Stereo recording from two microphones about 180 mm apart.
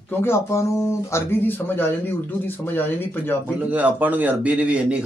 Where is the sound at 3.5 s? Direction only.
10° right (ahead or behind).